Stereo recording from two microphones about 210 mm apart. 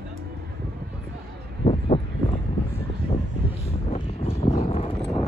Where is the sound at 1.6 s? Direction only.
30° left (ahead or behind).